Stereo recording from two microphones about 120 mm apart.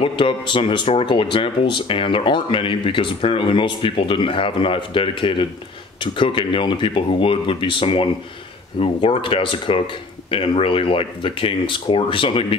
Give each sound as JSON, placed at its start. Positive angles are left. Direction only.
{"t": 0.0, "sound": "speech", "side_deg": 45}